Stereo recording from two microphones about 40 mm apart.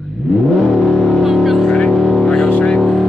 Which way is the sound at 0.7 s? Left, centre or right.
Centre.